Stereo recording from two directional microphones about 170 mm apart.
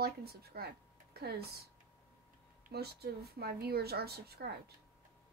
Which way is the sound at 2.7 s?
70° right (ahead or behind).